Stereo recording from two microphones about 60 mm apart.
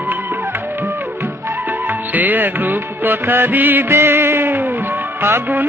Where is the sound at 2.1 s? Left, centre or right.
Right.